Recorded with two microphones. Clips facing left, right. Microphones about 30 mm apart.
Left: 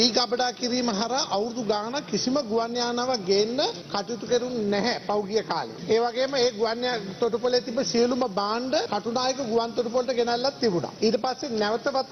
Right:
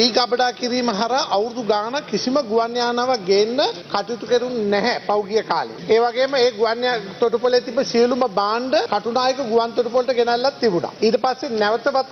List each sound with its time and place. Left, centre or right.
0.0 s a man's voice: right
11.5 s a man's voice: centre